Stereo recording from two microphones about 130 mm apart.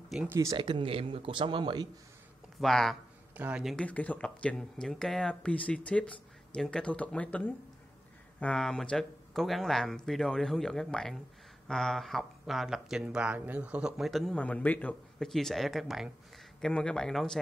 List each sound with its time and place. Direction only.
0.3 s speech: 25° right (ahead or behind)
0.6 s speech: 40° right (ahead or behind)
2.6 s speech: centre (ahead or behind)
3.3 s speech: 10° right (ahead or behind)
3.6 s speech: 10° left (ahead or behind)